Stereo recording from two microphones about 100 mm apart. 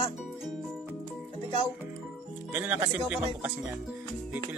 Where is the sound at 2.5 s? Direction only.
20° right (ahead or behind).